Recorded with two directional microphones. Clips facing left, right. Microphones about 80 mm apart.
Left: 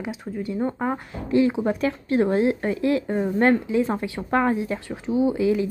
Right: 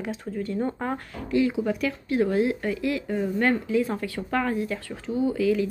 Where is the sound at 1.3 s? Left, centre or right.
Left.